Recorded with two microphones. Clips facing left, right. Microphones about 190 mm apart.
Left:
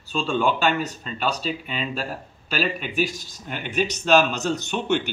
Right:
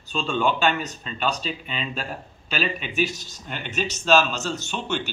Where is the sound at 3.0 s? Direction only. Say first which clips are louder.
Left 1 dB; 10° left (ahead or behind).